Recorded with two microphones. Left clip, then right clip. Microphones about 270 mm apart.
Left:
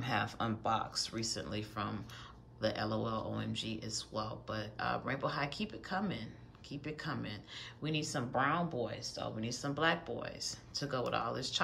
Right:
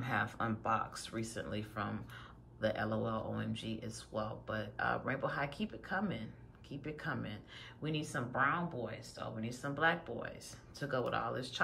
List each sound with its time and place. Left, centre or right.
0.0 s speech: centre